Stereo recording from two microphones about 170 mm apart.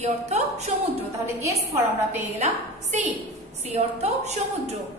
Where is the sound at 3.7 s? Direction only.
40° right (ahead or behind).